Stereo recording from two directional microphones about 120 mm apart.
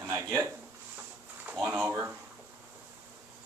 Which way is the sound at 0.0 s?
25° right (ahead or behind).